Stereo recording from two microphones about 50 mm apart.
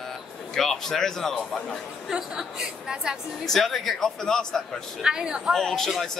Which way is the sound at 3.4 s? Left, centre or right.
Centre.